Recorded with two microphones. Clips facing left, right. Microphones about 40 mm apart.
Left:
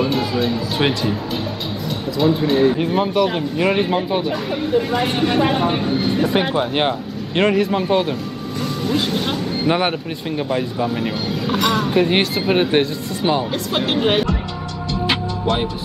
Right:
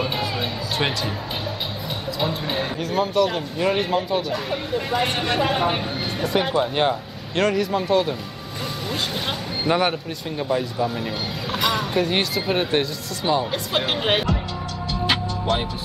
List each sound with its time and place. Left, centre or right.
0.0 s music: centre
2.1 s speech: centre
2.8 s speech: left
4.3 s speech: centre
6.2 s speech: left
8.8 s speech: centre
9.7 s speech: centre
11.4 s speech: centre
12.0 s speech: centre
13.5 s speech: centre
14.9 s music: centre